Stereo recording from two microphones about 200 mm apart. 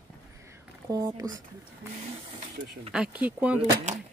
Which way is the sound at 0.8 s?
20° right (ahead or behind).